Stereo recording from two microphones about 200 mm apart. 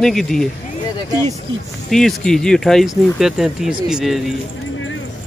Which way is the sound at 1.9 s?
Centre (ahead or behind).